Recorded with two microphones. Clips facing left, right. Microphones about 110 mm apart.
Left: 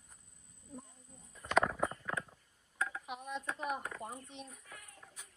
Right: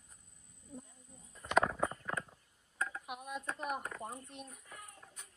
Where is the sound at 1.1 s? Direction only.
Centre (ahead or behind).